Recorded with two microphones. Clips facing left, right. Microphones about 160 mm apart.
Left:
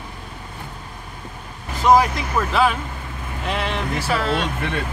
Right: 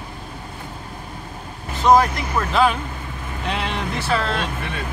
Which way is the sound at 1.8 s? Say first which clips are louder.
Even; 5° left (ahead or behind).